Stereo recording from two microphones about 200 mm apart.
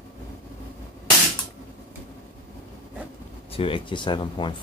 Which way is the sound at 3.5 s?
25° left (ahead or behind).